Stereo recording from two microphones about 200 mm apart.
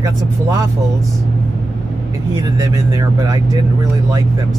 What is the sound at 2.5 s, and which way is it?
Speech, 15° right (ahead or behind).